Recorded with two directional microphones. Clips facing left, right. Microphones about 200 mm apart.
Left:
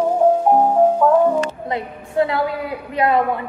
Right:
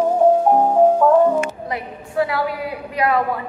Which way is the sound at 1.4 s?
25° left (ahead or behind).